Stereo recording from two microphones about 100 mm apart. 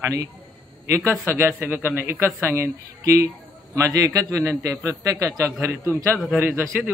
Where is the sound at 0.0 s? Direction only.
35° right (ahead or behind).